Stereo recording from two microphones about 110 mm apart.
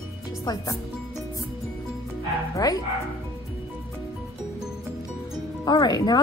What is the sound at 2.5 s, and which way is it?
Speech, 35° left (ahead or behind).